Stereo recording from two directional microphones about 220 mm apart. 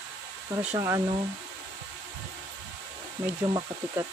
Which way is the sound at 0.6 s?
10° right (ahead or behind).